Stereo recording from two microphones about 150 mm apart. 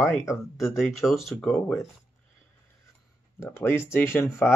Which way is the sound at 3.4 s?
15° left (ahead or behind).